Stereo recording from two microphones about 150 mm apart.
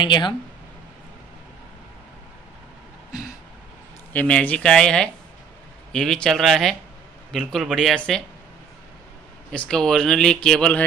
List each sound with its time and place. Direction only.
0.0 s speech: 30° left (ahead or behind)
4.1 s speech: 10° left (ahead or behind)
9.5 s speech: 5° left (ahead or behind)